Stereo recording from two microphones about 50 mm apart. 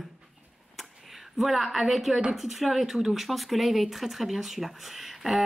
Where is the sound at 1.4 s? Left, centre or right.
Centre.